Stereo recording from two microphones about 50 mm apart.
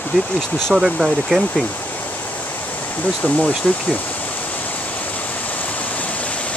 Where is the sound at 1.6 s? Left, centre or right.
Left.